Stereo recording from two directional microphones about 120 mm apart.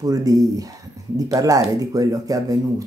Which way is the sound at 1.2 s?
30° right (ahead or behind).